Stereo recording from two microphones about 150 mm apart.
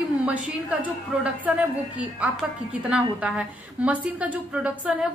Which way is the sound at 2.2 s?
10° right (ahead or behind).